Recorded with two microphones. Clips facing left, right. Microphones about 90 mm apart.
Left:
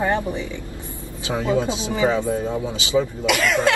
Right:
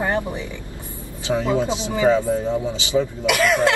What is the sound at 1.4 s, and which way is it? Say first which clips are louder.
Speech: left 2 dB; 25° right (ahead or behind).